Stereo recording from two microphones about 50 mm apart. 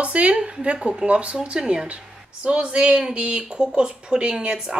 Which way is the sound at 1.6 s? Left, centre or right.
Centre.